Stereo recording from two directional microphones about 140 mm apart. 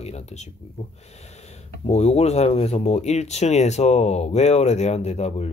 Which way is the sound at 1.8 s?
50° left (ahead or behind).